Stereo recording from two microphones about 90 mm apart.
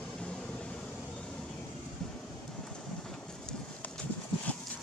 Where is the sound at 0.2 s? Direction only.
10° left (ahead or behind).